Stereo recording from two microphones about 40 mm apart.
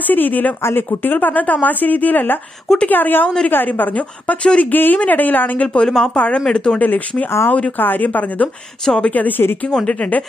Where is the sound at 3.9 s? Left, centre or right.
Left.